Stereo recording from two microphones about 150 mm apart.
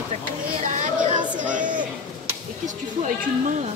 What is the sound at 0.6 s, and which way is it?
Speech, 55° right (ahead or behind).